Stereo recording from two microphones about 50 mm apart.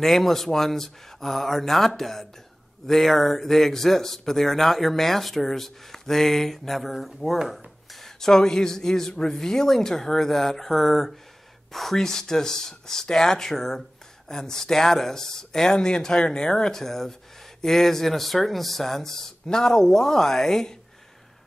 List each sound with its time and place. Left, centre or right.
0.0 s speech: centre